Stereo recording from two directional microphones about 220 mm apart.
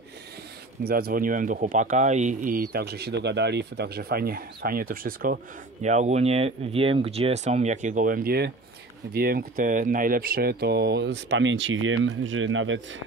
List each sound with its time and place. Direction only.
0.8 s speech: 45° right (ahead or behind); by 12.8 s 60° right (ahead or behind)